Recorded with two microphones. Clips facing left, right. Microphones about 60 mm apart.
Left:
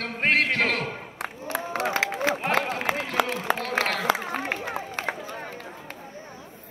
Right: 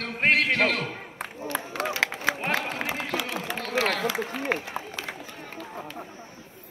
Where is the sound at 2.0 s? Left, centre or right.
Right.